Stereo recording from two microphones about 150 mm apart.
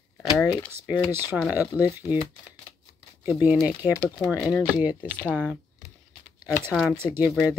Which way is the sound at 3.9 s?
20° left (ahead or behind).